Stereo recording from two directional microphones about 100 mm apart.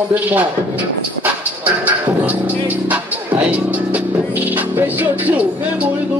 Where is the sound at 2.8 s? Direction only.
15° right (ahead or behind).